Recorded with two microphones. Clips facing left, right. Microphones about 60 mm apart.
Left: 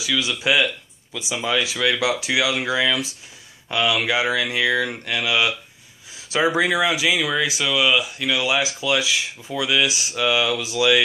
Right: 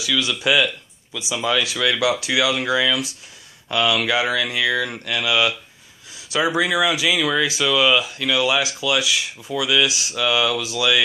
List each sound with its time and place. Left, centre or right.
0.0 s speech: centre
1.1 s speech: left